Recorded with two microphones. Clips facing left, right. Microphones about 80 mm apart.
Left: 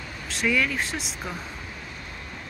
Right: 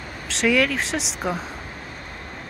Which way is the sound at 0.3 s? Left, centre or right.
Right.